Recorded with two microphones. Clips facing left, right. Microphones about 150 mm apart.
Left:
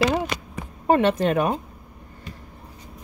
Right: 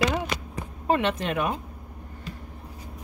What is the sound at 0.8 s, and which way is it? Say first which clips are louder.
Speech: left 6 dB; 40° left (ahead or behind).